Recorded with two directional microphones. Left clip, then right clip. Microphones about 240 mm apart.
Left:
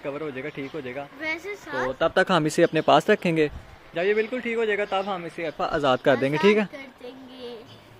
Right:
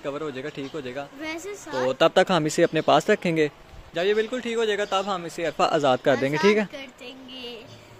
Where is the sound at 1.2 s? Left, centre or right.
Right.